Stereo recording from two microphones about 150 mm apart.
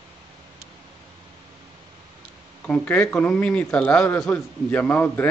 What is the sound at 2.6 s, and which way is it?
A man's voice, 10° left (ahead or behind).